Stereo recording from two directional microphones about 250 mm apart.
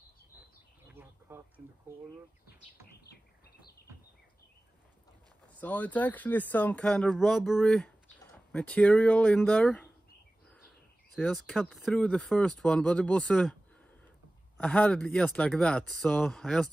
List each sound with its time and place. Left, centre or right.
1.3 s speech: centre
3.0 s bird: left
5.5 s speech: centre
11.1 s speech: centre
14.6 s speech: centre